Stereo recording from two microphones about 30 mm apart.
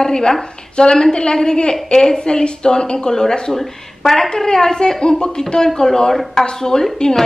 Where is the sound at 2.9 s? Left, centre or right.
Centre.